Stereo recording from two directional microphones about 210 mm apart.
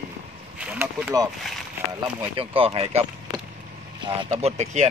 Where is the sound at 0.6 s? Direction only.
10° right (ahead or behind).